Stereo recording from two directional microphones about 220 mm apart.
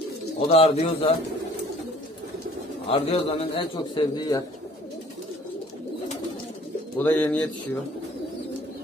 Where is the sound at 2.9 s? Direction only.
25° left (ahead or behind).